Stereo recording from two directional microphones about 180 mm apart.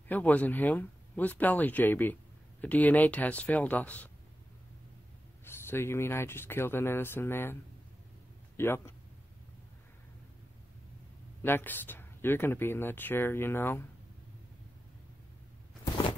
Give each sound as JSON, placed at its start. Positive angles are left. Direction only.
{"t": 0.1, "sound": "speech", "side_deg": 10}
{"t": 5.4, "sound": "speech", "side_deg": 15}
{"t": 8.5, "sound": "speech", "side_deg": 15}
{"t": 11.4, "sound": "speech", "side_deg": 10}